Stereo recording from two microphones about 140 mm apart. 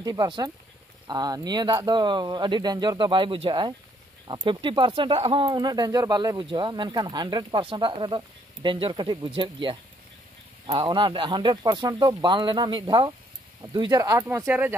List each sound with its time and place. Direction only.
0.0 s speech: 30° right (ahead or behind)
14.2 s speech: 10° right (ahead or behind)